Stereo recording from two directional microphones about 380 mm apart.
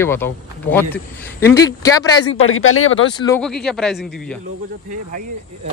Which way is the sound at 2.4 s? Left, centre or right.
Left.